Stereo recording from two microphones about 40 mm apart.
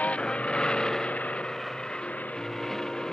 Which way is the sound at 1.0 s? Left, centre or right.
Left.